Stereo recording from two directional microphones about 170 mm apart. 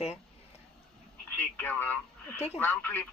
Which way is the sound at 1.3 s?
10° left (ahead or behind).